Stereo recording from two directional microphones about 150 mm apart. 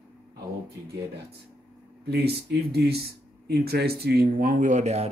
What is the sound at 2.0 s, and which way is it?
Speech, 90° right.